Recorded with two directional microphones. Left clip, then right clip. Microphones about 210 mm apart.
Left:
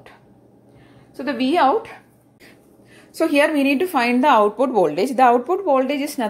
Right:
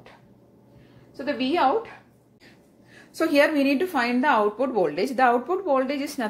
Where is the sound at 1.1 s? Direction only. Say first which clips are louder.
Left 5 dB; 35° left (ahead or behind).